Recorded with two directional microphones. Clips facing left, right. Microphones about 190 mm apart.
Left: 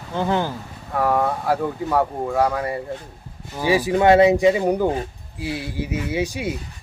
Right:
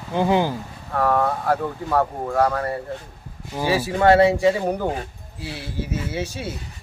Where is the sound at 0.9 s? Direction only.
10° left (ahead or behind).